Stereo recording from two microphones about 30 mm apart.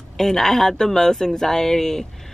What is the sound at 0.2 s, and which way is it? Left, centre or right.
Speech, centre.